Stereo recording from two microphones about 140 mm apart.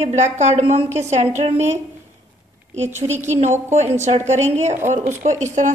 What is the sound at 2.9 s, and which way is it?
A woman's voice, 55° right (ahead or behind).